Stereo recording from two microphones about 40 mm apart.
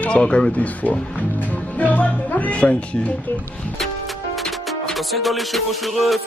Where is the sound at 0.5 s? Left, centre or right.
Left.